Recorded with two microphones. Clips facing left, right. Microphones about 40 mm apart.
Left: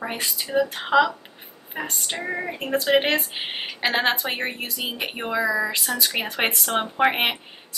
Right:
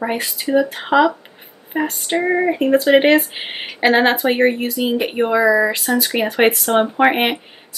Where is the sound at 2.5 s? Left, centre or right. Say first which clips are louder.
Right 6 dB; centre.